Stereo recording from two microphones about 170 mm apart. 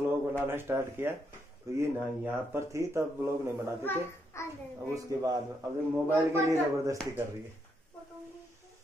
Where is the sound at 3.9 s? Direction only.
10° left (ahead or behind).